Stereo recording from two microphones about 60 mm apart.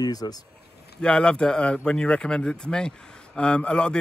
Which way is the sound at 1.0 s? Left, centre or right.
Centre.